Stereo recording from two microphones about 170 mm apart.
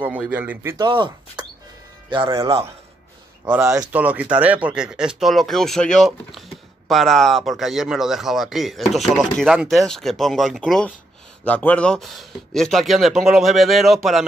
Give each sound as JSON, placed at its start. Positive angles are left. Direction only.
{"t": 0.0, "sound": "a man's voice", "side_deg": -10}
{"t": 0.8, "sound": "a man's voice", "side_deg": -30}